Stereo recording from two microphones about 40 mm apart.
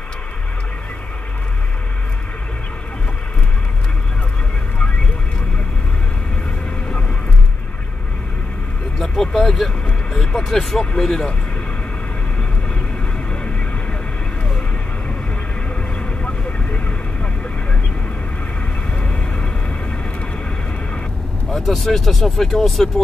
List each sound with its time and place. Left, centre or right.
9.0 s vehicle: centre
10.1 s speech: centre
16.0 s vehicle: left
18.9 s vehicle: left
21.5 s vehicle: centre
21.8 s speech: centre